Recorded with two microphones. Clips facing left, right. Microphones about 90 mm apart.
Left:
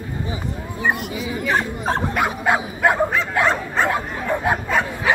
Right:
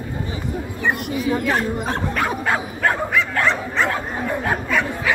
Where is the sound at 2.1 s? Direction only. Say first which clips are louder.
Left 1 dB; 15° left (ahead or behind).